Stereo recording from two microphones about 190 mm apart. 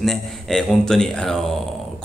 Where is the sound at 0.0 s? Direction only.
Centre (ahead or behind).